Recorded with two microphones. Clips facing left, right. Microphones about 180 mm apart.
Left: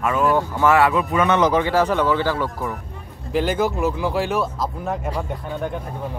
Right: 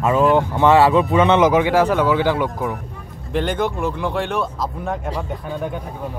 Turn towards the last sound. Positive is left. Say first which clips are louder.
# right 1 dB
turn(degrees=0)  # may be behind; listen again after turning